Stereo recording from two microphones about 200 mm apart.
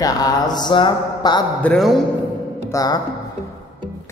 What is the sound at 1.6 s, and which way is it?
Speech, centre (ahead or behind).